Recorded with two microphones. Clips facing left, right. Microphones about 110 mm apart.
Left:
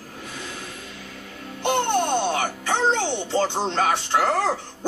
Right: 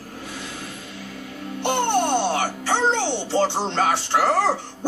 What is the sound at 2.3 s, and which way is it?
Music, 30° right (ahead or behind).